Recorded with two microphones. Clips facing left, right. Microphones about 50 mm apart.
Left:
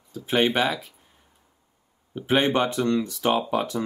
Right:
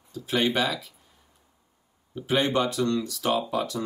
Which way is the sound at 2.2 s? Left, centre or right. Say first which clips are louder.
Left 3 dB; left.